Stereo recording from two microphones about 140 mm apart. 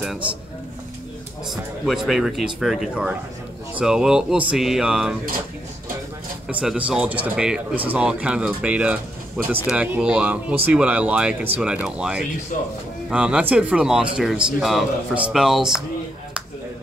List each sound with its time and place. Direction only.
1.5 s speech: centre (ahead or behind)
6.5 s speech: 5° right (ahead or behind)
12.5 s a man's voice: 65° left (ahead or behind)
13.1 s speech: 10° right (ahead or behind)